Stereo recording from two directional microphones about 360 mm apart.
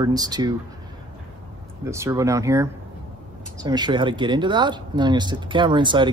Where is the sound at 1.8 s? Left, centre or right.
Centre.